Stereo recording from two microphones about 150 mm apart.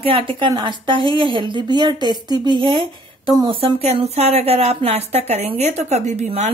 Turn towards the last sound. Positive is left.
turn(degrees=-50)  # may be behind; listen again after turning